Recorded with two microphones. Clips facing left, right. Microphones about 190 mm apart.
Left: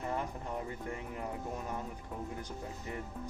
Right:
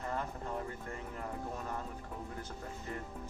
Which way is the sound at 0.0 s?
15° left (ahead or behind).